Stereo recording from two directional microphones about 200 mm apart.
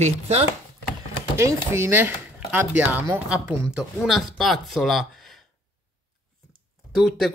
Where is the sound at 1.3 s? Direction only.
15° right (ahead or behind).